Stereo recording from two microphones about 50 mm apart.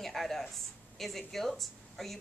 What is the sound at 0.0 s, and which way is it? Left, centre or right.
A woman's voice, centre.